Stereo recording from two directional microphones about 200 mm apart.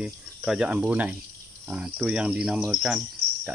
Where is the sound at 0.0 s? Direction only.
5° right (ahead or behind).